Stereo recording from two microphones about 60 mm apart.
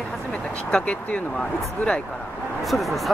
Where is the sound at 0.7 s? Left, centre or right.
Centre.